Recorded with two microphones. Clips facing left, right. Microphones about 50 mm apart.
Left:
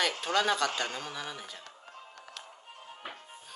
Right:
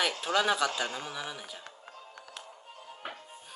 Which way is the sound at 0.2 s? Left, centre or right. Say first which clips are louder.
Right 2 dB; centre.